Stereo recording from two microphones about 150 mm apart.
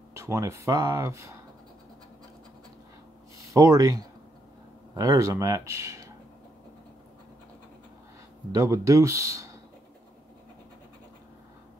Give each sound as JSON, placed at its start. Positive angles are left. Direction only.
{"t": 0.1, "sound": "speech", "side_deg": -20}
{"t": 3.3, "sound": "speech", "side_deg": -20}
{"t": 8.5, "sound": "speech", "side_deg": -20}